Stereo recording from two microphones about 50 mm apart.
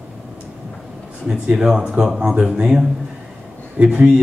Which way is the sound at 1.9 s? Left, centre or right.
Centre.